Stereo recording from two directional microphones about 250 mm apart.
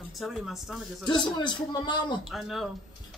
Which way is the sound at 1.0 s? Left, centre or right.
Centre.